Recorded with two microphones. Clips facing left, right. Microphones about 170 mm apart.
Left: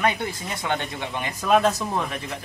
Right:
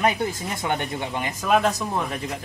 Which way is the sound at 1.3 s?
Centre (ahead or behind).